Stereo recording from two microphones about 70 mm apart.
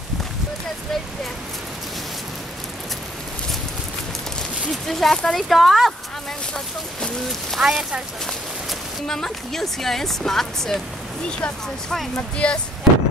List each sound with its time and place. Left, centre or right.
4.8 s speech: centre
7.5 s speech: centre